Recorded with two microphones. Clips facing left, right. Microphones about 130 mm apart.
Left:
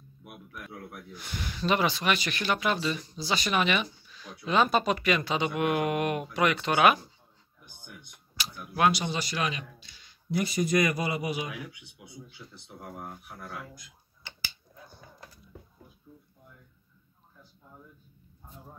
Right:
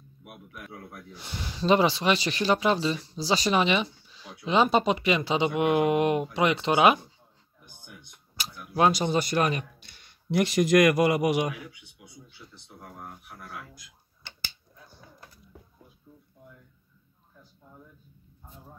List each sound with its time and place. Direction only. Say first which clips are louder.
1.1 s speech: even; 25° right (ahead or behind)
8.9 s a man's voice: right 7 dB; 45° right (ahead or behind); by 11.4 s 70° right (ahead or behind)